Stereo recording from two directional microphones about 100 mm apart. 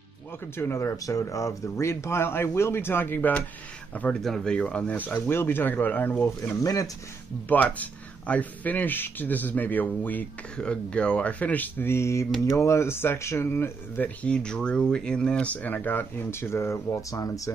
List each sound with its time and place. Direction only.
0.6 s speech: 25° left (ahead or behind)
4.2 s speech: 5° left (ahead or behind); by 6.9 s 35° left (ahead or behind)
7.4 s speech: 15° left (ahead or behind); by 17.3 s 30° left (ahead or behind)